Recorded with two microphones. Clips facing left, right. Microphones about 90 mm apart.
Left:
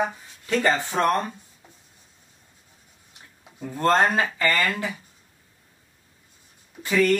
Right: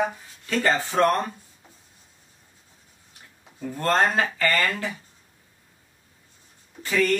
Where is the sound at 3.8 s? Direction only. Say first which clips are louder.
Left 2 dB; 20° left (ahead or behind).